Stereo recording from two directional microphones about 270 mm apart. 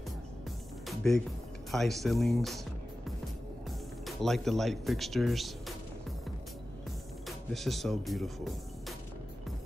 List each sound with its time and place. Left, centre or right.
0.8 s music: centre
1.7 s speech: centre
4.0 s speech: centre
7.2 s speech: centre